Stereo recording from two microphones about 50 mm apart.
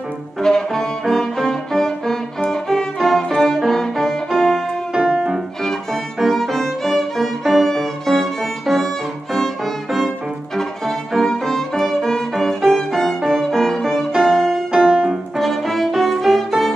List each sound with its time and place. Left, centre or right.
0.4 s music: centre
4.9 s music: centre
5.6 s violin: centre
14.1 s music: centre
15.3 s music: centre